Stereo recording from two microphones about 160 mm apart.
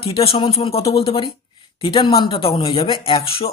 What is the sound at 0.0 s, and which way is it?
Speech, 35° left (ahead or behind).